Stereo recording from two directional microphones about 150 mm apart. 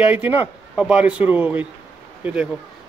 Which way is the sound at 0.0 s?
10° right (ahead or behind).